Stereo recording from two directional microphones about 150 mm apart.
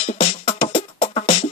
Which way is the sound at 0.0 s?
45° left (ahead or behind).